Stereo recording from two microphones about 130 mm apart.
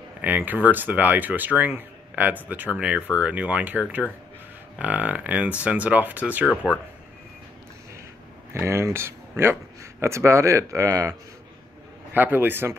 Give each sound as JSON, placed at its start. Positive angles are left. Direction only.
{"t": 0.2, "sound": "speech", "side_deg": -15}
{"t": 6.5, "sound": "speech", "side_deg": 10}
{"t": 8.6, "sound": "speech", "side_deg": -20}
{"t": 12.1, "sound": "speech", "side_deg": -15}